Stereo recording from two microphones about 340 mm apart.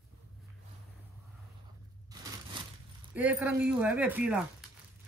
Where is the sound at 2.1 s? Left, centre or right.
Centre.